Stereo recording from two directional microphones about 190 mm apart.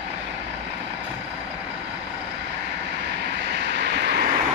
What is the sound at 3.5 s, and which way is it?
Vehicle, 65° right (ahead or behind).